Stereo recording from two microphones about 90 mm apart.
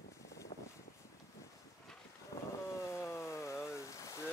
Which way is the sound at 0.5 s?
65° left (ahead or behind).